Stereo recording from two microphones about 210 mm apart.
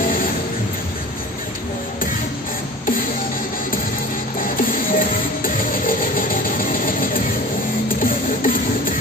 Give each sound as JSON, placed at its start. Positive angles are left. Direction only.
{"t": 4.4, "sound": "music", "side_deg": 40}